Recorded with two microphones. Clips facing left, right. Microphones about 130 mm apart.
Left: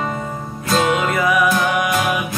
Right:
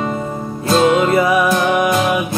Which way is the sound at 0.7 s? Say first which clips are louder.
Right 5 dB; 30° right (ahead or behind).